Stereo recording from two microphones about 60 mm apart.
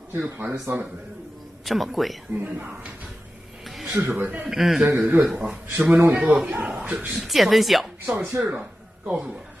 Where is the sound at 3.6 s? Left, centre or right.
Centre.